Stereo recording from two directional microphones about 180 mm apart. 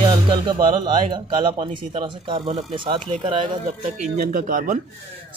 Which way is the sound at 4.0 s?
50° right (ahead or behind).